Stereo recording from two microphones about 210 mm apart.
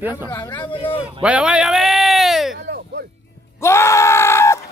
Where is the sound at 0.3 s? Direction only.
15° left (ahead or behind).